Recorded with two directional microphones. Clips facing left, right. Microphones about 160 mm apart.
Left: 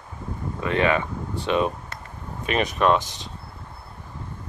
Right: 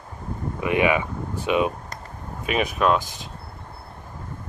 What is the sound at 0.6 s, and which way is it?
Speech, 15° right (ahead or behind).